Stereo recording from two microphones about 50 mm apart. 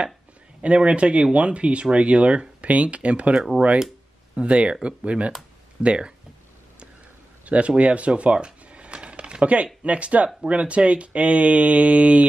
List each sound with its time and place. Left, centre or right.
0.6 s speech: right
4.4 s speech: right
7.4 s mechanisms: right
9.8 s speech: right